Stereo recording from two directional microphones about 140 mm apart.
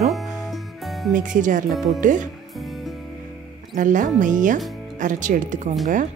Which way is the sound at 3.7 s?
65° right (ahead or behind).